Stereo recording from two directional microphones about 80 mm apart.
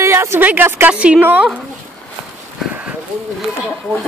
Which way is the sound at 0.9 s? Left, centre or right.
Centre.